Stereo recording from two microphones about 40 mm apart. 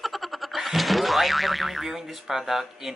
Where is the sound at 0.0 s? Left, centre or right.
Centre.